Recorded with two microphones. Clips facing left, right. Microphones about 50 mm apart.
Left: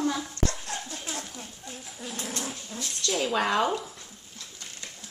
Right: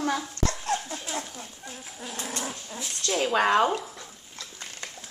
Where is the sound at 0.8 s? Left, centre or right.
Right.